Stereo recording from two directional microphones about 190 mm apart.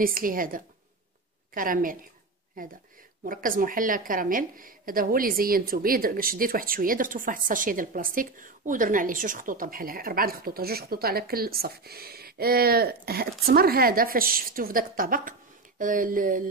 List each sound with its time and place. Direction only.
0.0 s a woman's voice: 50° right (ahead or behind)
3.3 s a woman's voice: 45° right (ahead or behind)